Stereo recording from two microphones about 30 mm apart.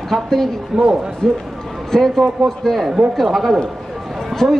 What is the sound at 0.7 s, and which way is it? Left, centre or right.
Speech, right.